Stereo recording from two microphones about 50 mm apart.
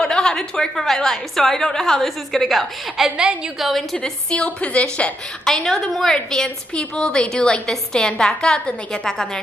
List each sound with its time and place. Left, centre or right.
0.0 s a woman's voice: centre
3.9 s a woman's voice: centre
5.4 s a woman's voice: centre